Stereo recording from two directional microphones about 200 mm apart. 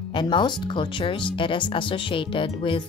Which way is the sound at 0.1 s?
25° left (ahead or behind).